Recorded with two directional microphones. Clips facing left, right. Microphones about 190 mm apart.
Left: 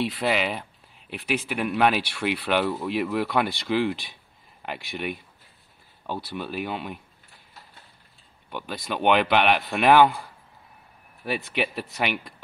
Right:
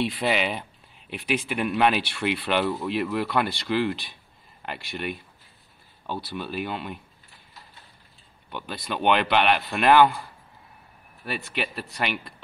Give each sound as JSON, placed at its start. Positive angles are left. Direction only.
{"t": 0.2, "sound": "speech", "side_deg": 0}
{"t": 8.5, "sound": "speech", "side_deg": 10}
{"t": 11.2, "sound": "speech", "side_deg": 15}